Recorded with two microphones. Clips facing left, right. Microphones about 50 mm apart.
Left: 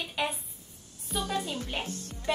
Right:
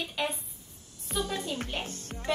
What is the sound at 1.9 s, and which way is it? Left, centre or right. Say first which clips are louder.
Music: left 1 dB; right.